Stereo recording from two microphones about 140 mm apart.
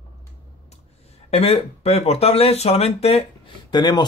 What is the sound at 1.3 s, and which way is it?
Speech, 45° left (ahead or behind).